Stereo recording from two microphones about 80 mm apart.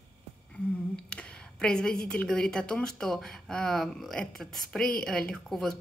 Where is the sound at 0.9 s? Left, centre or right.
Centre.